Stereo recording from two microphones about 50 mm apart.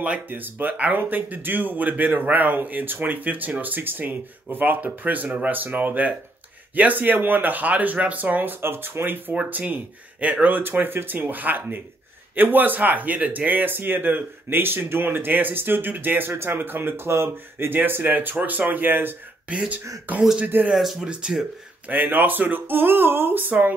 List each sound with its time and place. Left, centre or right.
0.3 s speech: right
9.3 s speech: right
10.6 s speech: right
16.3 s speech: right
17.6 s speech: right
20.7 s speech: centre
21.8 s speech: right